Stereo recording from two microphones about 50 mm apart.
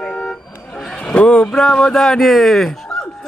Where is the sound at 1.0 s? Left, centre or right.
Centre.